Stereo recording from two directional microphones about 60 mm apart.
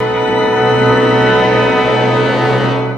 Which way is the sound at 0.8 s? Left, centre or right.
Centre.